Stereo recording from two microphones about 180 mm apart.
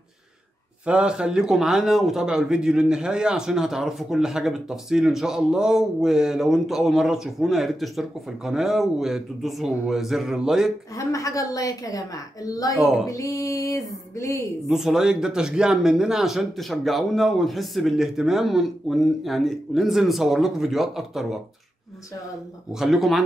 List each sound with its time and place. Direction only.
0.8 s a man's voice: 5° right (ahead or behind)
11.0 s a woman's voice: 15° left (ahead or behind)
14.7 s a man's voice: centre (ahead or behind)
22.7 s a man's voice: centre (ahead or behind)